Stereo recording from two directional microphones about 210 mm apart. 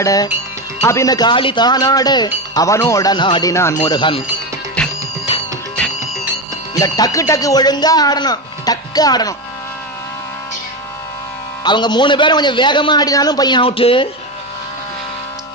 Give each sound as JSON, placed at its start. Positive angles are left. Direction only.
{"t": 0.0, "sound": "speech", "side_deg": 15}
{"t": 4.8, "sound": "music", "side_deg": 5}
{"t": 6.7, "sound": "speech", "side_deg": 15}
{"t": 11.6, "sound": "speech", "side_deg": 20}